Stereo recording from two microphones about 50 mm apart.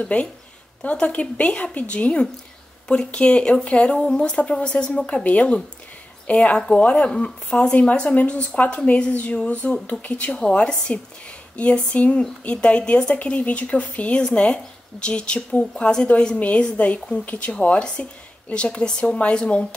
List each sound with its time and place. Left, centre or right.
0.0 s a woman's voice: left